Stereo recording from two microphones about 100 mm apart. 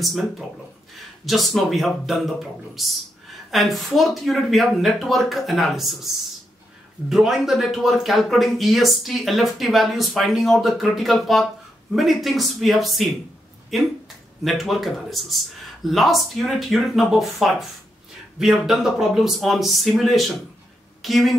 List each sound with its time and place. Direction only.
0.0 s speech: centre (ahead or behind)
7.1 s a woman's voice: 5° right (ahead or behind)